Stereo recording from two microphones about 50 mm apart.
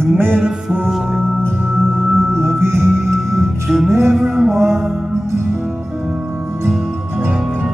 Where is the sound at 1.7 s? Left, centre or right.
Right.